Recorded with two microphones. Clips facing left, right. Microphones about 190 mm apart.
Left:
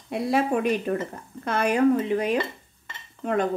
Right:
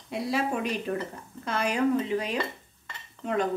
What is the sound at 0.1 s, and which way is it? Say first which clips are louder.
A woman's voice: left 5 dB; 55° left (ahead or behind).